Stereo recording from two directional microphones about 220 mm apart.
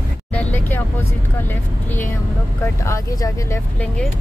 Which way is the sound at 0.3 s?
5° left (ahead or behind).